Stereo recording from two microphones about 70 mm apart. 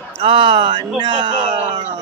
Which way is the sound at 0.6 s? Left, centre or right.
Right.